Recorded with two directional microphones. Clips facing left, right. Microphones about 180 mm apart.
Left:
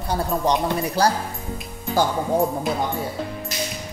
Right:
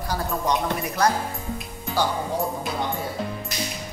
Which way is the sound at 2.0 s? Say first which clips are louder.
Left 3 dB; 45° left (ahead or behind).